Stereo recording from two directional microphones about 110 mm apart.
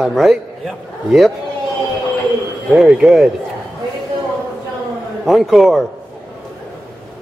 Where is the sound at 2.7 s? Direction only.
5° right (ahead or behind).